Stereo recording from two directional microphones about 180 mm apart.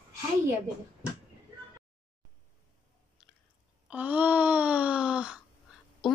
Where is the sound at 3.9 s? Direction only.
10° right (ahead or behind).